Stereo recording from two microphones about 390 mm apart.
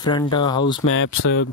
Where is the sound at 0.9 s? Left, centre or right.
Left.